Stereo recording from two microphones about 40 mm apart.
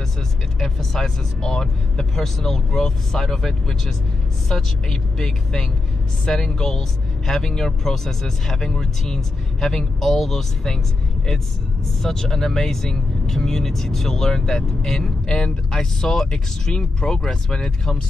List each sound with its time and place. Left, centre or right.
0.6 s speech: centre
12.0 s speech: centre